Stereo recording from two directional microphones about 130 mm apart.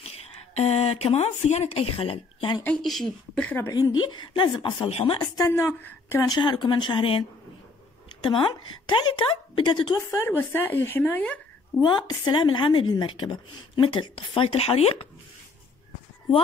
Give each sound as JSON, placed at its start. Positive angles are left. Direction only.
{"t": 0.0, "sound": "speech", "side_deg": 50}
{"t": 2.6, "sound": "speech", "side_deg": 5}
{"t": 3.6, "sound": "a woman's voice", "side_deg": 25}
{"t": 4.8, "sound": "speech", "side_deg": 45}
{"t": 5.5, "sound": "speech", "side_deg": 15}
{"t": 6.2, "sound": "a woman's voice", "side_deg": 35}
{"t": 10.1, "sound": "speech", "side_deg": 15}
{"t": 11.8, "sound": "a woman's voice", "side_deg": 35}